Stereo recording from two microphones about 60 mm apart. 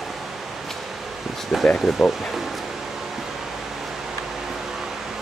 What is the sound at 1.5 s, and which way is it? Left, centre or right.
Speech, centre.